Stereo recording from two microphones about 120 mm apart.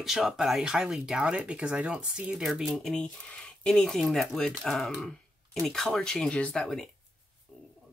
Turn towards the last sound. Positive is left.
turn(degrees=0)  # may be behind; listen again after turning